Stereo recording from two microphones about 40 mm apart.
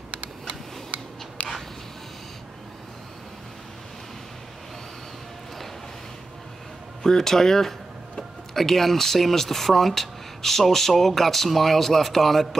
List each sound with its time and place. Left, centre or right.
0.9 s a sound: right
1.4 s dog: left
7.0 s speech: centre